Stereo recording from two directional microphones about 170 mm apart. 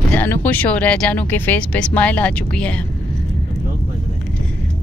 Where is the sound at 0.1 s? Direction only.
10° left (ahead or behind).